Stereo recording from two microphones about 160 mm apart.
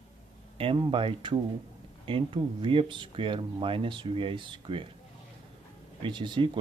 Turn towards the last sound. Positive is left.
turn(degrees=-30)  # may be behind; listen again after turning